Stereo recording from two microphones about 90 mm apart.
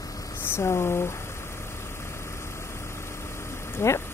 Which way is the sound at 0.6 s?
30° left (ahead or behind).